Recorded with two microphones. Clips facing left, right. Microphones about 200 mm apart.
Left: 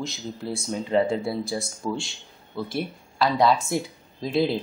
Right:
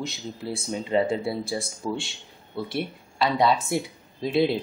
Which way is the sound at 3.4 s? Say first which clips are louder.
Left 1 dB; centre (ahead or behind).